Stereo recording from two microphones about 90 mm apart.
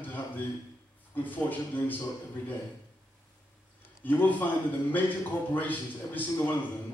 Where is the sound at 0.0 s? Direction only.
20° left (ahead or behind).